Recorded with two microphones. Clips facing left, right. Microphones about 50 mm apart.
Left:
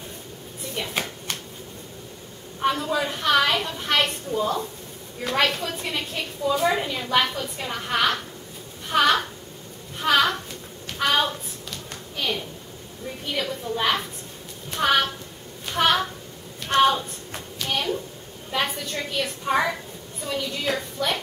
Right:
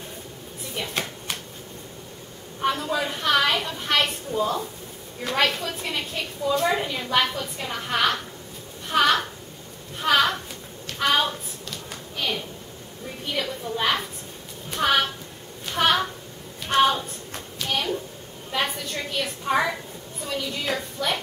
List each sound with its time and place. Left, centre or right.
0.7 s a sound: centre
2.6 s a woman's voice: centre
8.8 s a sound: centre
13.2 s a woman's voice: centre
16.6 s hands: centre
18.5 s a woman's voice: centre